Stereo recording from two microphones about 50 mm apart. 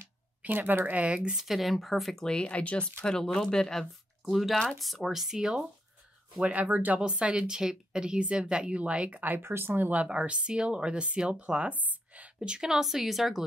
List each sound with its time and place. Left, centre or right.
0.4 s speech: right
0.9 s speech: right
1.3 s speech: centre
2.4 s speech: left
3.1 s speech: centre
4.2 s speech: centre
6.4 s speech: right
7.0 s speech: centre
9.4 s speech: right
10.0 s speech: right
12.4 s speech: centre